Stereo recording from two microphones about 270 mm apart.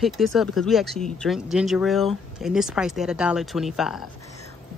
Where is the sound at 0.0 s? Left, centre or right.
Centre.